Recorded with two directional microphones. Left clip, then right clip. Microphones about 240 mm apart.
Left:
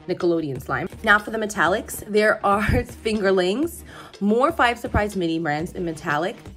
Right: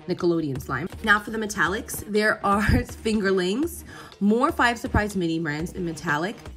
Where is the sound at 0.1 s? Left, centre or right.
Centre.